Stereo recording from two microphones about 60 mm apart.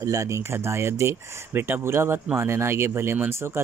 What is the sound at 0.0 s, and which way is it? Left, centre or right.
Speech, right.